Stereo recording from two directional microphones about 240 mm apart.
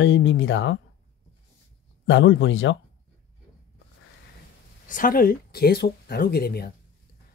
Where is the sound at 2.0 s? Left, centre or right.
Left.